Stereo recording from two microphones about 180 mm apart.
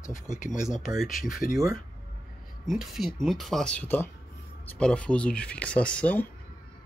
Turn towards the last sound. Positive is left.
turn(degrees=5)  # may be behind; listen again after turning